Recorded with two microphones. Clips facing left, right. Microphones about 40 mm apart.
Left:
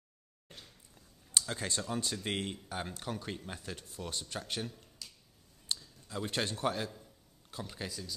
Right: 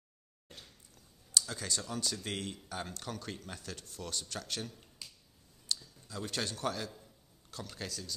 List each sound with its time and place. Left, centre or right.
1.5 s speech: left
5.0 s finger snapping: centre
5.7 s a sound: left
6.0 s speech: left